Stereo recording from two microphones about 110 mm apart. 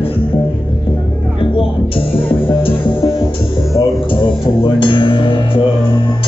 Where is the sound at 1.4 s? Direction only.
55° left (ahead or behind).